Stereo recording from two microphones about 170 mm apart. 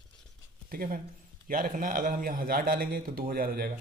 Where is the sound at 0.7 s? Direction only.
60° right (ahead or behind).